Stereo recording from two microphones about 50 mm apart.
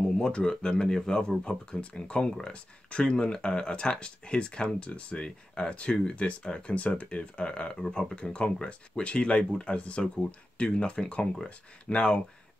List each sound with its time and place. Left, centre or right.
0.2 s speech: centre
7.8 s speech: centre